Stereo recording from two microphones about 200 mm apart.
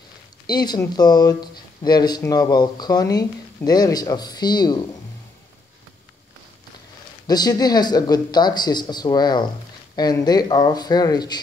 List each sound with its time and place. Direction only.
0.5 s speech: 20° left (ahead or behind)
7.2 s speech: 20° left (ahead or behind)